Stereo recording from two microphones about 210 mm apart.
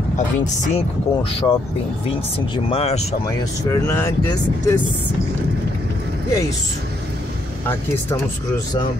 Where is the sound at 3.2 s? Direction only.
15° left (ahead or behind).